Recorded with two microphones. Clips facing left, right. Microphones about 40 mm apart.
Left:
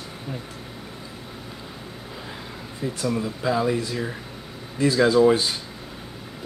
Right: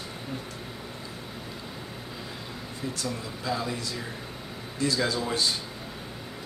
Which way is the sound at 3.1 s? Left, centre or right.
Left.